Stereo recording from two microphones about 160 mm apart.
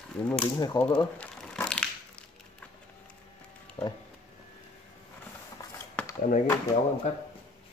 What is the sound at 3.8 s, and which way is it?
Music, 5° left (ahead or behind).